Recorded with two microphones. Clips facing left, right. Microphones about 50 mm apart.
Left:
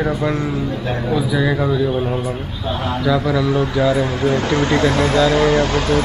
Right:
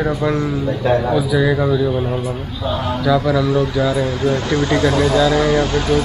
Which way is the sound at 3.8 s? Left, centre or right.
Left.